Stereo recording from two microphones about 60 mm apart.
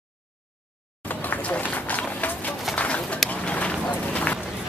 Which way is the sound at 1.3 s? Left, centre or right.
Left.